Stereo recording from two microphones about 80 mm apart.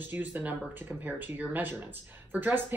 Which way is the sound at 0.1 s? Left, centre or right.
Right.